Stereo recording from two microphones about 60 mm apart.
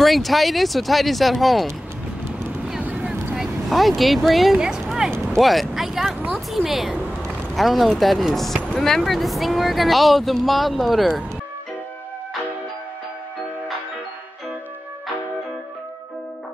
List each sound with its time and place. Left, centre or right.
0.0 s speech: centre
2.8 s boat: right
3.3 s speech: centre